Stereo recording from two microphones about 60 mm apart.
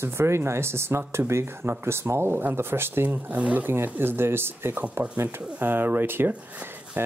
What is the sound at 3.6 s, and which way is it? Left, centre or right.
Speech, right.